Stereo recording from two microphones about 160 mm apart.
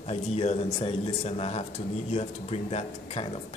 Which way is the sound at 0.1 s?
40° left (ahead or behind).